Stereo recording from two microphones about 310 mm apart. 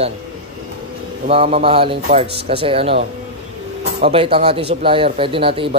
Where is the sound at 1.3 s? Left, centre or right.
Centre.